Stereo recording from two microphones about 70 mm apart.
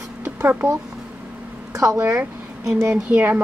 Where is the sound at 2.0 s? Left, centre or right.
Right.